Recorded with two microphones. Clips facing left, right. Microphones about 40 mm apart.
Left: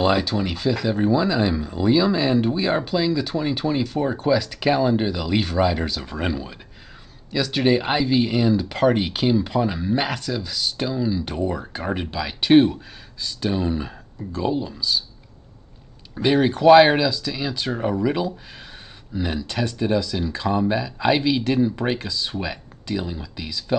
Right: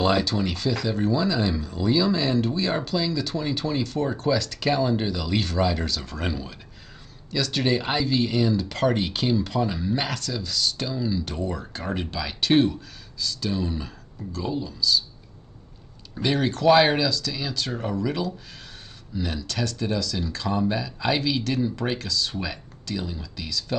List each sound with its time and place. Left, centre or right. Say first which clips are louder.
0.0 s speech: left 2 dB; centre
16.2 s speech: left 5 dB; centre